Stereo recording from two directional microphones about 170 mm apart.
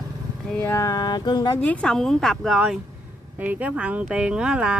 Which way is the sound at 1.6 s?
10° left (ahead or behind).